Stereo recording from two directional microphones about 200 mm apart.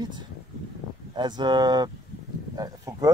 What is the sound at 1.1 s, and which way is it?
Speech, 20° right (ahead or behind).